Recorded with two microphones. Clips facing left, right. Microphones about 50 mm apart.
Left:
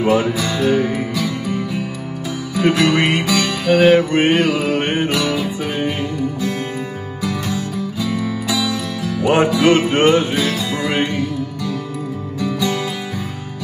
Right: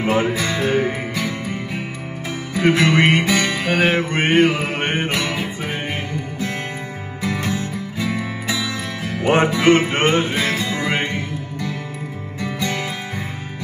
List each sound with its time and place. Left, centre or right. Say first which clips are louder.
0.0 s music: left 3 dB; right